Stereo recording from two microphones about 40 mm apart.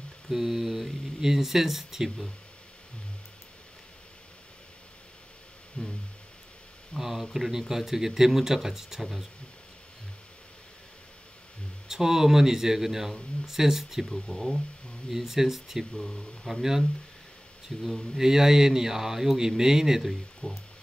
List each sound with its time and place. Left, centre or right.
0.3 s speech: centre
5.8 s a sound: left
7.0 s speech: centre
11.9 s speech: centre
14.0 s speech: centre
15.0 s speech: centre
15.9 s speech: centre
17.7 s speech: centre
18.1 s speech: centre
20.0 s speech: centre